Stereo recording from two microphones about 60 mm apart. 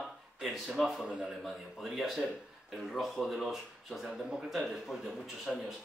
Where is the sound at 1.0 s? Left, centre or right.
Centre.